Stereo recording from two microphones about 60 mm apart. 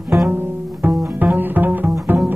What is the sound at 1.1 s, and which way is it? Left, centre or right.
Bowed string instrument, right.